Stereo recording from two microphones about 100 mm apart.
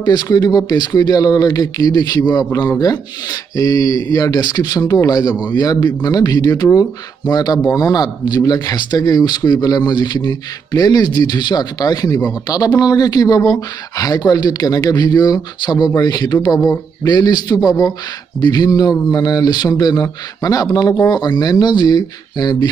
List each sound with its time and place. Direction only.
0.0 s speech: 40° left (ahead or behind)
21.1 s speech: 45° left (ahead or behind)